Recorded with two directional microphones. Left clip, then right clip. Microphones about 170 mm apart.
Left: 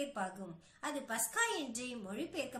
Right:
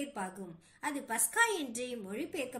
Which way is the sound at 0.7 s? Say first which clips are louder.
Right 3 dB; 15° right (ahead or behind).